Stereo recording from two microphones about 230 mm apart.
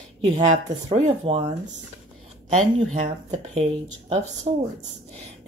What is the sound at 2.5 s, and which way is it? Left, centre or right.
Speech, right.